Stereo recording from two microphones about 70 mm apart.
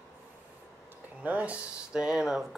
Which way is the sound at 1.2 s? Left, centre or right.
Right.